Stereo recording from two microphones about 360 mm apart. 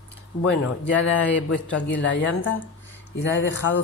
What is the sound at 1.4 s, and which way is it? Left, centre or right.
A woman's voice, left.